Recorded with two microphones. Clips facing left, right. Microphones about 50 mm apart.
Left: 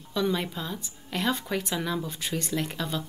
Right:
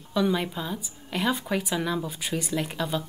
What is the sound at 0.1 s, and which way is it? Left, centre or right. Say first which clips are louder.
A woman's voice: right 2 dB; centre.